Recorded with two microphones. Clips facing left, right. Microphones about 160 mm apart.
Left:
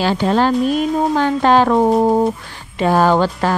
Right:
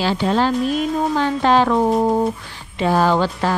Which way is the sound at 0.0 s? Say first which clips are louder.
Left 3 dB; 50° left (ahead or behind).